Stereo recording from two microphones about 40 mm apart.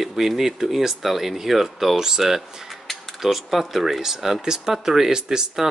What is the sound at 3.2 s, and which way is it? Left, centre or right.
Speech, centre.